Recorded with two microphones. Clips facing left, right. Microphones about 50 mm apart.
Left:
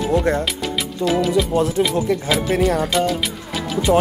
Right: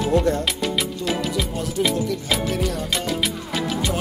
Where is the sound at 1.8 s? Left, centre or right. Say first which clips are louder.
Right 2 dB; left.